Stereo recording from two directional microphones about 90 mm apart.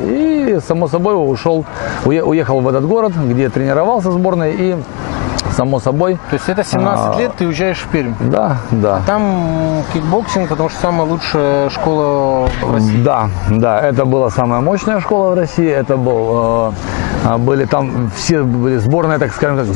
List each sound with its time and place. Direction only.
0.7 s speech: 15° left (ahead or behind)
5.7 s speech: 15° left (ahead or behind)
13.7 s speech: 15° left (ahead or behind)
17.5 s speech: 15° left (ahead or behind)
18.9 s speech: 20° left (ahead or behind)